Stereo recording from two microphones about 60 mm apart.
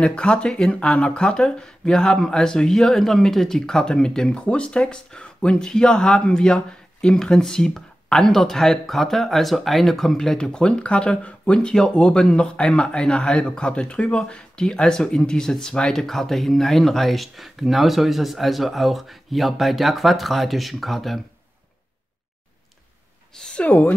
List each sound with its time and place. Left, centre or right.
0.0 s speech: centre
23.5 s speech: left